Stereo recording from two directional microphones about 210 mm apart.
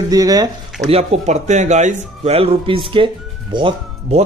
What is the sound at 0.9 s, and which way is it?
A man's voice, 30° right (ahead or behind).